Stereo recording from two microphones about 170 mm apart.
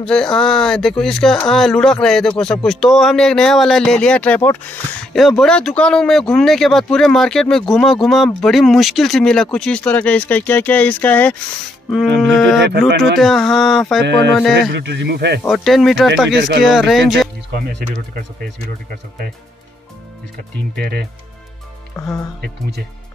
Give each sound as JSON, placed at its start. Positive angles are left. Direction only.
{"t": 0.0, "sound": "speech", "side_deg": 5}
{"t": 14.5, "sound": "speech", "side_deg": -85}
{"t": 15.4, "sound": "speech", "side_deg": 0}
{"t": 16.3, "sound": "speech", "side_deg": -90}
{"t": 16.7, "sound": "speech", "side_deg": 0}
{"t": 21.9, "sound": "speech", "side_deg": 20}